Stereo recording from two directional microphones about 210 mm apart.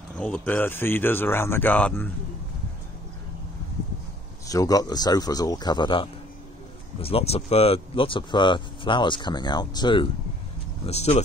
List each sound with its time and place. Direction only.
0.2 s speech: 10° left (ahead or behind)
4.5 s speech: 15° left (ahead or behind)